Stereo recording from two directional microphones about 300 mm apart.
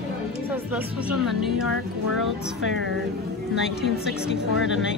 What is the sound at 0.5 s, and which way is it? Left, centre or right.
A woman's voice, centre.